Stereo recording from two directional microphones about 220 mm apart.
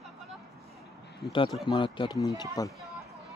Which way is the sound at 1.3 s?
20° left (ahead or behind).